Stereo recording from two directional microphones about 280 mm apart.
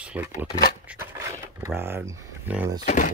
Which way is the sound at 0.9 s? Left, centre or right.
Centre.